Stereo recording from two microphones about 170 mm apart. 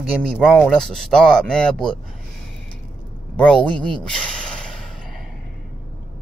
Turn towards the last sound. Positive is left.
turn(degrees=5)  # may be behind; listen again after turning